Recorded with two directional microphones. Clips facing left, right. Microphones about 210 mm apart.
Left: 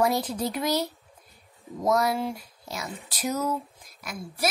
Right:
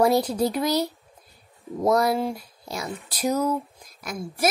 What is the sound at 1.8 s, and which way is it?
A woman's voice, 35° right (ahead or behind).